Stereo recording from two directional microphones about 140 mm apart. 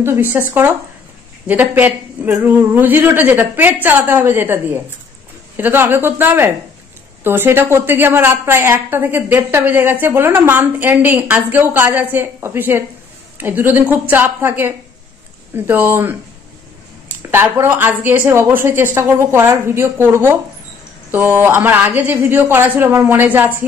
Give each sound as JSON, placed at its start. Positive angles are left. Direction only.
{"t": 0.0, "sound": "a woman's voice", "side_deg": -15}
{"t": 1.5, "sound": "a woman's voice", "side_deg": -10}
{"t": 17.3, "sound": "a woman's voice", "side_deg": -15}